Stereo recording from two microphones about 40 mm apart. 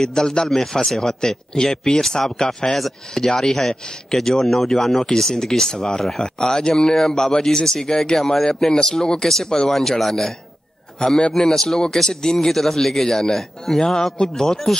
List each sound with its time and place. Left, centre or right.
0.0 s a man's voice: centre
11.0 s a man's voice: centre